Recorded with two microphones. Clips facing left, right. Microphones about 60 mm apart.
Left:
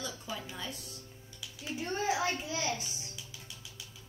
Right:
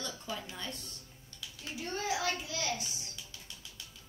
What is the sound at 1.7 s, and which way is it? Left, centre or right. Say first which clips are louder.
A child's voice: left 3 dB; left.